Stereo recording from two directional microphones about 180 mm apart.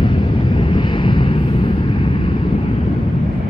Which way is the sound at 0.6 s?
30° left (ahead or behind).